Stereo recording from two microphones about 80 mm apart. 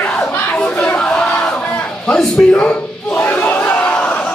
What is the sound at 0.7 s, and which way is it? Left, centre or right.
Crowd, centre.